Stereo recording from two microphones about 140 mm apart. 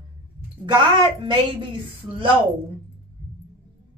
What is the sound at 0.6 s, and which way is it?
Speech, 35° right (ahead or behind).